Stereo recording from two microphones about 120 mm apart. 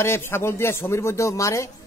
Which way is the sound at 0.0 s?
20° left (ahead or behind).